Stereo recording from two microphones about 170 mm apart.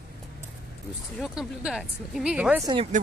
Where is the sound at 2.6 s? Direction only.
30° right (ahead or behind).